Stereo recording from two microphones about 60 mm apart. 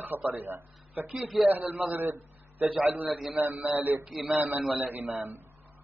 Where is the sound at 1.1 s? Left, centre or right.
Centre.